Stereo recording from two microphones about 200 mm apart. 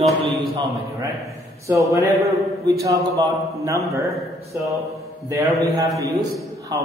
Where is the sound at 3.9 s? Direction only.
15° right (ahead or behind).